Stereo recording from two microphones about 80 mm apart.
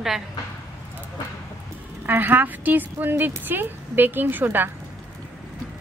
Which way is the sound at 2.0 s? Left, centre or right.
Right.